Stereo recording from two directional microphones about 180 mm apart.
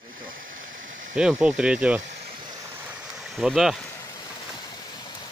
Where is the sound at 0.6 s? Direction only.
50° right (ahead or behind).